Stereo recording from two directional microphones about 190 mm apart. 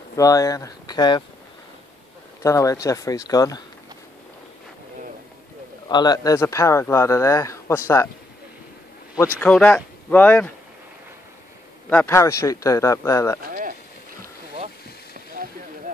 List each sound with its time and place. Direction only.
0.1 s speech: 20° left (ahead or behind)
2.4 s speech: 15° left (ahead or behind)
5.9 s speech: 20° left (ahead or behind)
9.4 s speech: 5° left (ahead or behind)
11.9 s speech: 10° left (ahead or behind)
13.5 s a sound: 45° right (ahead or behind)